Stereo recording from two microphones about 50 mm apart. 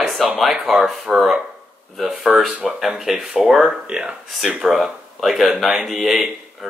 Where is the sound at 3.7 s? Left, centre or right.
Right.